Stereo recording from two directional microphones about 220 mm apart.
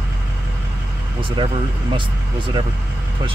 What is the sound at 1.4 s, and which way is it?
Speech, 20° right (ahead or behind).